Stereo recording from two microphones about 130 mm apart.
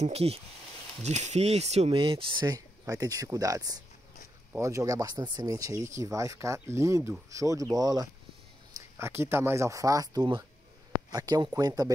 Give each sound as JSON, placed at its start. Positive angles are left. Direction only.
{"t": 0.0, "sound": "speech", "side_deg": -50}